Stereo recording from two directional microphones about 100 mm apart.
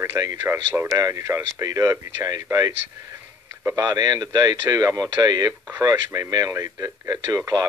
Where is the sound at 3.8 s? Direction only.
40° right (ahead or behind).